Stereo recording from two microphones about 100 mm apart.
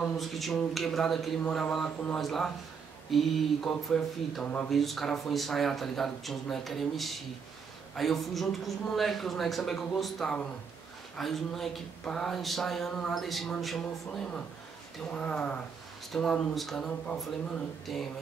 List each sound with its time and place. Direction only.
0.0 s speech: centre (ahead or behind)
15.0 s speech: 10° left (ahead or behind)